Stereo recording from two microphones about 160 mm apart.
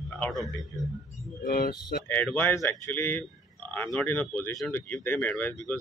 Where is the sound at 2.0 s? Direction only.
10° left (ahead or behind).